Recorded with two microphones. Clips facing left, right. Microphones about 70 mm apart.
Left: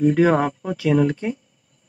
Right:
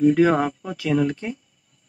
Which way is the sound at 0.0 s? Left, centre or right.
Left.